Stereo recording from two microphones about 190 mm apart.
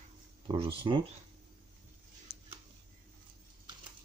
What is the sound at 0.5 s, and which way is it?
Speech, 30° right (ahead or behind).